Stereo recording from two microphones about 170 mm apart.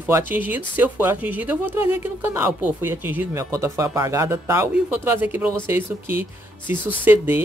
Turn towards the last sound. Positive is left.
turn(degrees=-10)  # may be behind; listen again after turning